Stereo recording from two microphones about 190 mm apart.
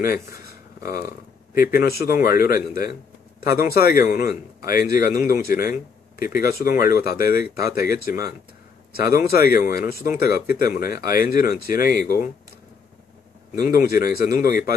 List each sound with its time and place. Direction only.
1.5 s speech: 50° left (ahead or behind)
13.6 s speech: 50° left (ahead or behind)